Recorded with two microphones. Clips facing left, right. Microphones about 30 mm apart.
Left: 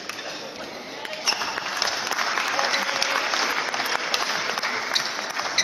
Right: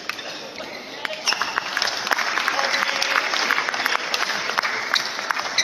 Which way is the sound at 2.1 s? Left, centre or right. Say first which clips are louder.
Right 7 dB; right.